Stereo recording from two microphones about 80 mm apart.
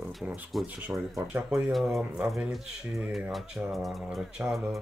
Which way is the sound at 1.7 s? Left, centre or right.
Centre.